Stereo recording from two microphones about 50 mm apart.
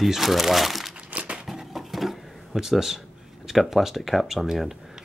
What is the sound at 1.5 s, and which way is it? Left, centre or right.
Sewing machine, centre.